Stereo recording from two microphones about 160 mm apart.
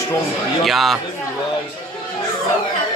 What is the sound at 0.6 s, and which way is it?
Speech, centre (ahead or behind).